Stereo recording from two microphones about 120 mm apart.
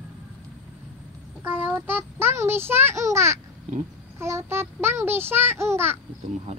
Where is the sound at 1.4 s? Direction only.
20° right (ahead or behind).